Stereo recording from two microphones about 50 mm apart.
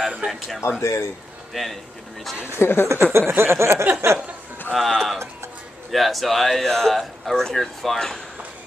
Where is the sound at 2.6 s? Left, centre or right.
Left.